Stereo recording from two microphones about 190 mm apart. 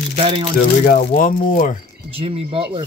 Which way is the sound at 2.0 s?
30° right (ahead or behind).